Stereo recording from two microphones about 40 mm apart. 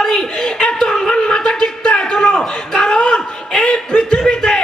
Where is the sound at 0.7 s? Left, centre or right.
Centre.